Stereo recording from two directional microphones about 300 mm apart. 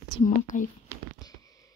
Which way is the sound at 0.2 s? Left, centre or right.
Left.